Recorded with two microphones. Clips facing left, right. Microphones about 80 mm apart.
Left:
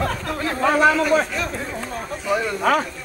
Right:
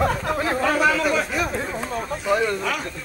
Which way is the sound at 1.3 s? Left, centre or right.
Centre.